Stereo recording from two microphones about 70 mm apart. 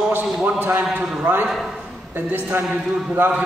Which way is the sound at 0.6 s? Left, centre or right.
Right.